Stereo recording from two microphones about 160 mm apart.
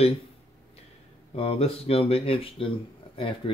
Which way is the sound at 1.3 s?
35° left (ahead or behind).